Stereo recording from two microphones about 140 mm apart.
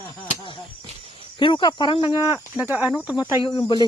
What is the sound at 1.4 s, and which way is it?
Speech, 35° left (ahead or behind).